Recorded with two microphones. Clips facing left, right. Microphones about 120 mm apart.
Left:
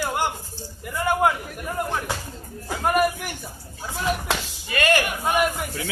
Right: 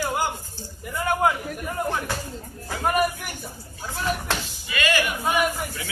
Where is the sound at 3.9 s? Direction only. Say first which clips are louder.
Left 2 dB; 10° left (ahead or behind).